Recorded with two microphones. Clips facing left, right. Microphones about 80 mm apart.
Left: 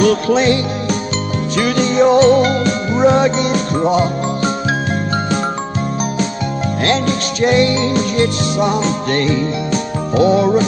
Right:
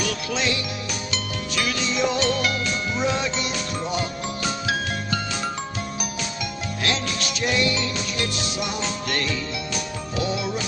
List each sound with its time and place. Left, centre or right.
0.0 s music: left
6.8 s music: left